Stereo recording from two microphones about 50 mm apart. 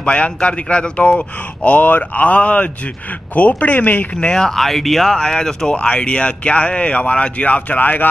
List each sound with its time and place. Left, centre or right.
0.0 s a man's voice: left
4.4 s speech: centre
5.8 s a man's voice: left